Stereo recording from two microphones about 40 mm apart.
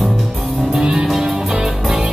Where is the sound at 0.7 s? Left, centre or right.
Centre.